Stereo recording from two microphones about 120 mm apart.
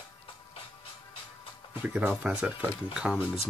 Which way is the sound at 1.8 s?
10° right (ahead or behind).